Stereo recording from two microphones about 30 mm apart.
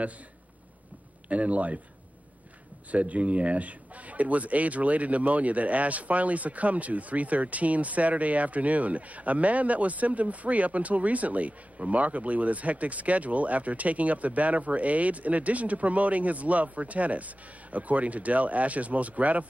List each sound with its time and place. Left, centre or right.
1.3 s speech: right
2.9 s speech: right